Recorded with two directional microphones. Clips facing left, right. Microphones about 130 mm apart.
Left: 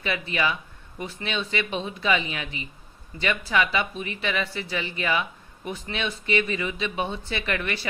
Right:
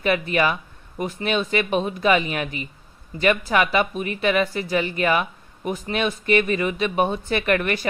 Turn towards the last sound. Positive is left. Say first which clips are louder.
# right 7 dB
turn(degrees=-45)  # may be behind; listen again after turning